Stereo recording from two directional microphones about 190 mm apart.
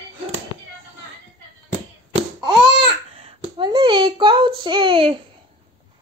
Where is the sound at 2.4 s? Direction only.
30° right (ahead or behind).